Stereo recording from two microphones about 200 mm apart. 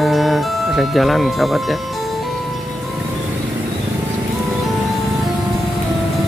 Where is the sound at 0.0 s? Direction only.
Centre (ahead or behind).